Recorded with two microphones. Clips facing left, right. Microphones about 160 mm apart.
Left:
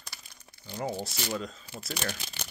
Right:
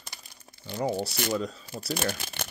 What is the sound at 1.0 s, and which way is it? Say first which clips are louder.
Speech: right 5 dB; 70° right (ahead or behind).